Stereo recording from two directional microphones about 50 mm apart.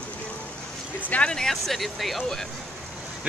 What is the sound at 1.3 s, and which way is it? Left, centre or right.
A man's voice, centre.